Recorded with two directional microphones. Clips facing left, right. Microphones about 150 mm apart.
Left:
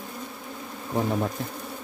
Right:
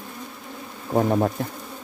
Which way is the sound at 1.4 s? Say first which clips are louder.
Right 4 dB; 55° right (ahead or behind).